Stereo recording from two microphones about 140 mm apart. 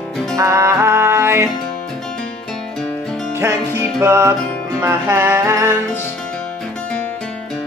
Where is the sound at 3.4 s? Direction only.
20° right (ahead or behind).